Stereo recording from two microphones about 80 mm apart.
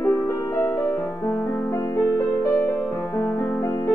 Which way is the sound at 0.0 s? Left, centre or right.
Left.